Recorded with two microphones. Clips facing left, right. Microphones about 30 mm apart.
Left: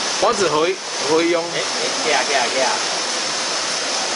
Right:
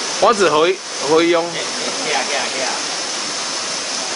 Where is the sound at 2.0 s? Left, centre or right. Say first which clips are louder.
Left 2 dB; centre.